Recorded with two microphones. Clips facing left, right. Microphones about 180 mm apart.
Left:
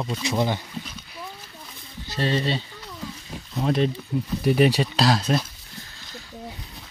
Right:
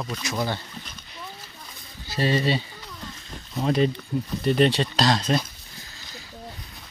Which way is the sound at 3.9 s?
10° left (ahead or behind).